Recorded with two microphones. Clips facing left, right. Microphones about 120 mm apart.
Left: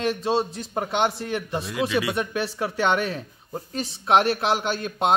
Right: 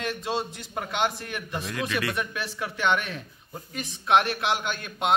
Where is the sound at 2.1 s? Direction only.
30° left (ahead or behind).